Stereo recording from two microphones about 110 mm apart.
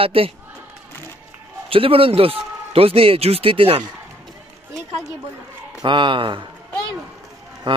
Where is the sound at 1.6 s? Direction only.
55° right (ahead or behind).